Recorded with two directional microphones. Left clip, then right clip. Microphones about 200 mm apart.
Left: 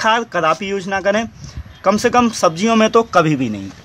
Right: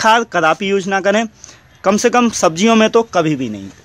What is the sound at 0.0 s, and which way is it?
Speech, 45° right (ahead or behind).